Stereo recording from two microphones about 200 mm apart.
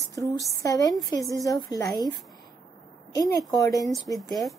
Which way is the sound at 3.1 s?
20° left (ahead or behind).